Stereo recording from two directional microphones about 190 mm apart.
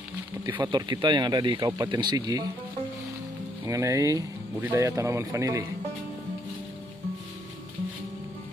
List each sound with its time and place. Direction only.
0.6 s speech: 25° right (ahead or behind)
3.6 s speech: 15° right (ahead or behind)